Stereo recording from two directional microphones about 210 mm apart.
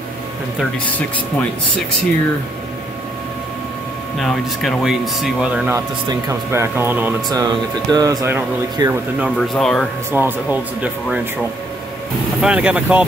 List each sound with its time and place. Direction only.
0.6 s speech: 5° left (ahead or behind)
4.2 s speech: centre (ahead or behind)
9.4 s speech: centre (ahead or behind)
10.1 s speech: 10° right (ahead or behind)
12.4 s speech: 5° right (ahead or behind)